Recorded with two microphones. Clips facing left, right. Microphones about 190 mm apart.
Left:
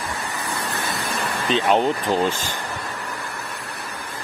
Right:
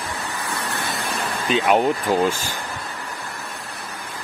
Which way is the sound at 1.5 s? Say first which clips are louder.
Right 1 dB; 5° right (ahead or behind).